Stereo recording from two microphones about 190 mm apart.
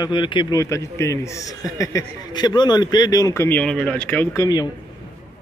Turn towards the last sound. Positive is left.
turn(degrees=20)  # may be behind; listen again after turning